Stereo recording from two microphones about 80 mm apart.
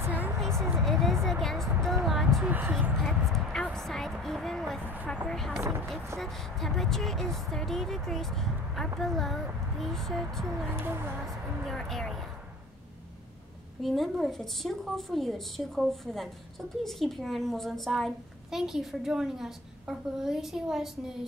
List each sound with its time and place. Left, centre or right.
0.0 s a sound: right
0.8 s a sound: centre
2.4 s speech: right
3.0 s a sound: centre
3.6 s a woman's voice: centre
5.6 s speech: right
6.1 s speech: centre
10.7 s speech: right
11.2 s speech: centre
13.8 s speech: centre